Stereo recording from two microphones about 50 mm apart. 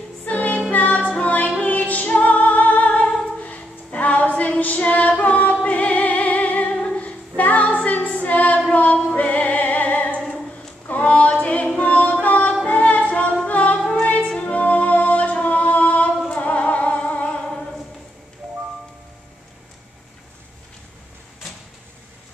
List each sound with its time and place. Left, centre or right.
0.2 s music: left
7.0 s female singing: left
8.7 s choir: left
9.1 s music: left
10.9 s a sound: left
11.8 s music: left
13.1 s a capella: left
13.5 s music: left
15.4 s singing: left